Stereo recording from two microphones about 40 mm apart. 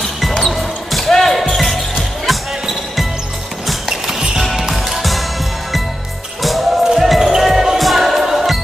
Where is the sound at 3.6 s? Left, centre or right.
Centre.